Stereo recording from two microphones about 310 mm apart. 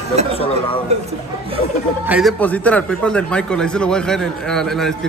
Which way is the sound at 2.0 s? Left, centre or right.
Centre.